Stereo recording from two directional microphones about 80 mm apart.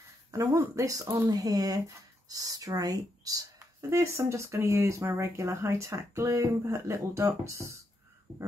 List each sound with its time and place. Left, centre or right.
0.3 s speech: right
3.5 s speech: right